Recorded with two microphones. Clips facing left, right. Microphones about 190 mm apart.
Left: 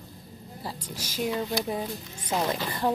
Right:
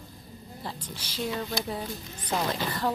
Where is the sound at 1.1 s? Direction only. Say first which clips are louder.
Left 3 dB; 15° left (ahead or behind).